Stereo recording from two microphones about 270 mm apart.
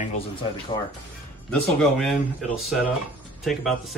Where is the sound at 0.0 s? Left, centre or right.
Left.